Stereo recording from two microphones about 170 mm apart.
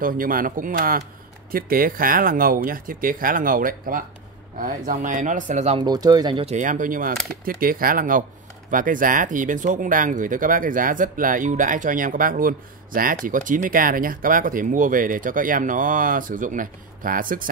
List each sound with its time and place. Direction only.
0.0 s speech: 55° right (ahead or behind)
5.8 s speech: 25° right (ahead or behind)
6.4 s speech: 45° right (ahead or behind)